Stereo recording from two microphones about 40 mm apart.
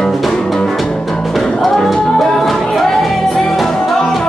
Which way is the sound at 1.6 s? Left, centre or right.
Centre.